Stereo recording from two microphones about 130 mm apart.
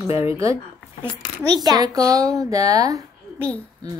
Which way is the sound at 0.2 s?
20° right (ahead or behind).